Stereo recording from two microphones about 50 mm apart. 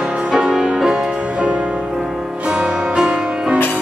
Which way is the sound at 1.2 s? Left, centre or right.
Right.